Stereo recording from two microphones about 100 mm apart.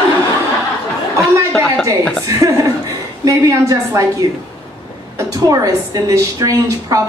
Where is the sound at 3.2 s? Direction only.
35° right (ahead or behind).